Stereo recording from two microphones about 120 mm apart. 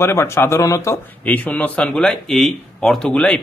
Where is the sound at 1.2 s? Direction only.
15° left (ahead or behind).